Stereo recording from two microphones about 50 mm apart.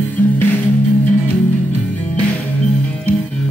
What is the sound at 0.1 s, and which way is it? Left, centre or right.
Music, left.